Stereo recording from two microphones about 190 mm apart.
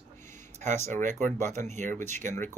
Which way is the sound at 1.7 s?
40° right (ahead or behind).